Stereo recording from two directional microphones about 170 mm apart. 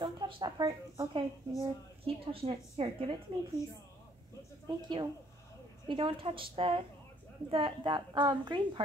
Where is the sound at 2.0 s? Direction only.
35° right (ahead or behind).